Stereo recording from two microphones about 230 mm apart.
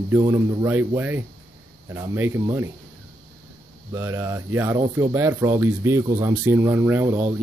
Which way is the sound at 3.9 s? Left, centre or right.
Centre.